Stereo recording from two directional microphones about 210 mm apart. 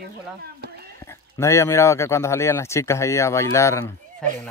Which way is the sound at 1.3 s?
15° left (ahead or behind).